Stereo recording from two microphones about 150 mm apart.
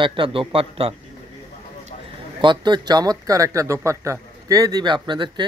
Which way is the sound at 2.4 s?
30° right (ahead or behind).